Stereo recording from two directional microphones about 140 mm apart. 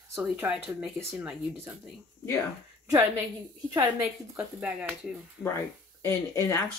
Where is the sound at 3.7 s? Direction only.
10° right (ahead or behind).